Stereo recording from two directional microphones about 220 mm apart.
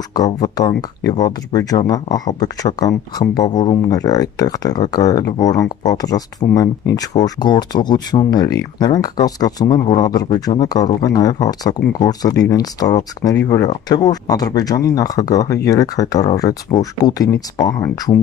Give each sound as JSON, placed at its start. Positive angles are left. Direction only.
{"t": 0.1, "sound": "speech", "side_deg": 15}